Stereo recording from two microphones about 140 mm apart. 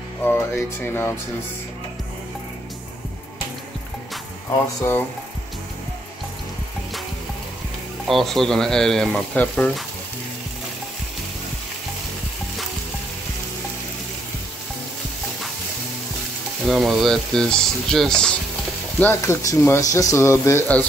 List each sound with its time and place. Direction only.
0.2 s speech: 15° left (ahead or behind)
8.1 s speech: centre (ahead or behind)
16.6 s speech: centre (ahead or behind)
18.9 s speech: 15° left (ahead or behind)